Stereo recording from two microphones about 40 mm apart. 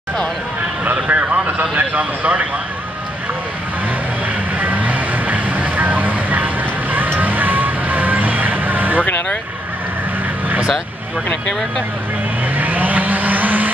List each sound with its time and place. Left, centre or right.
0.8 s speech: right
4.6 s music: right
12.5 s vehicle: right